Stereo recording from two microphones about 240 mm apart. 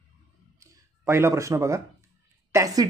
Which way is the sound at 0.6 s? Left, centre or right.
Centre.